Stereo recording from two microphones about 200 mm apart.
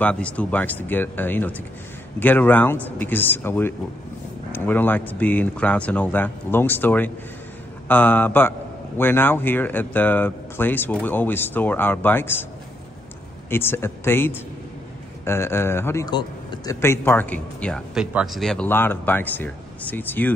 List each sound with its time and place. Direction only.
0.0 s a man's voice: 5° left (ahead or behind)
13.5 s a man's voice: 10° left (ahead or behind)